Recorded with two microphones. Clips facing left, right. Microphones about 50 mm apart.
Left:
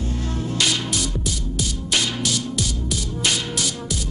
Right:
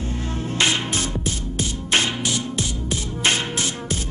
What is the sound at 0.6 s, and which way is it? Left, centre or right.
Music, right.